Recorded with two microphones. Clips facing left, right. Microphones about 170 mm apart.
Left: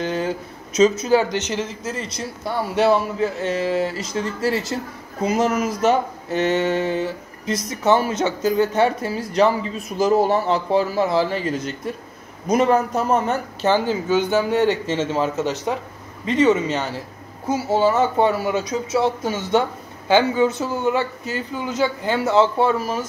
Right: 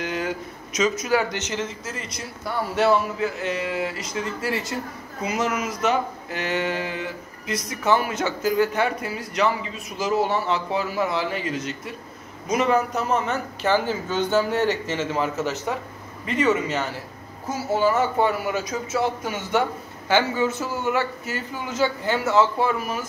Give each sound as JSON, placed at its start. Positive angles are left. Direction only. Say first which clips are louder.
{"t": 0.0, "sound": "a sound", "louder": "left 4 dB", "side_deg": 30}
{"t": 0.7, "sound": "speech", "louder": "left 6 dB", "side_deg": 30}
{"t": 3.2, "sound": "speech", "louder": "left 4 dB", "side_deg": 30}
{"t": 13.6, "sound": "a man's voice", "louder": "left 3 dB", "side_deg": 20}